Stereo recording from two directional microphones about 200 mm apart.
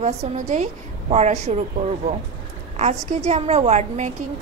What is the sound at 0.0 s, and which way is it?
A woman's voice, 35° right (ahead or behind).